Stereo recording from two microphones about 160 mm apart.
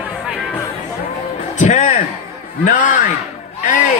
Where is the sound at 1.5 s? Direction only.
50° left (ahead or behind).